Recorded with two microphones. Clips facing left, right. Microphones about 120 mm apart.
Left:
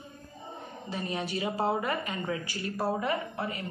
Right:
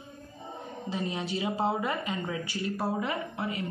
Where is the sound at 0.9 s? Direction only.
25° right (ahead or behind).